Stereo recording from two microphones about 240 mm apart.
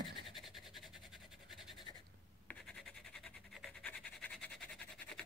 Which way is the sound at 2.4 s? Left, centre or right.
Centre.